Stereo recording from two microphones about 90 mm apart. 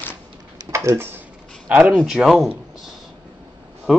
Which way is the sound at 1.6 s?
15° right (ahead or behind).